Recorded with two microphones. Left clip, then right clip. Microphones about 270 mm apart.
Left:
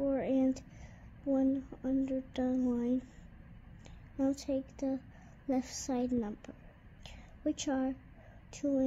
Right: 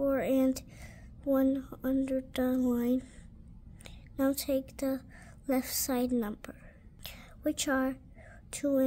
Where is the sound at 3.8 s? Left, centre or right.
Right.